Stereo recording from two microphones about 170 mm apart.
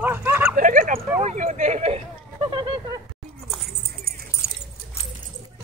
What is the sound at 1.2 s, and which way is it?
Speech, 45° right (ahead or behind).